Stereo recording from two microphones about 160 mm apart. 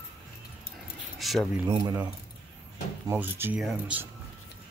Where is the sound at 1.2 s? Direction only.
Centre (ahead or behind).